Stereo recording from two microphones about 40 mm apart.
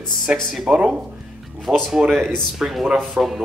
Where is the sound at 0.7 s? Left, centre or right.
Right.